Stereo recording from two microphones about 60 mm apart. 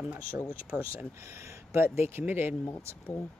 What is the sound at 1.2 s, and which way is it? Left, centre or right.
Speech, right.